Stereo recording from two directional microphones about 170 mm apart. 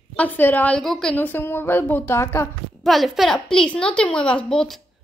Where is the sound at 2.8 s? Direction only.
Centre (ahead or behind).